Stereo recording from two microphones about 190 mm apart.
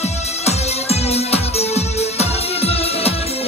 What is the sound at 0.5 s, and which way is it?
Music, 35° left (ahead or behind).